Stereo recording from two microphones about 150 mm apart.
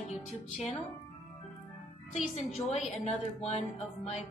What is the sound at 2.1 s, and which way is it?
A woman's voice, 45° left (ahead or behind).